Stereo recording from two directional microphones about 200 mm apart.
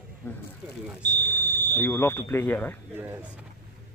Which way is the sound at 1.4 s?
55° right (ahead or behind).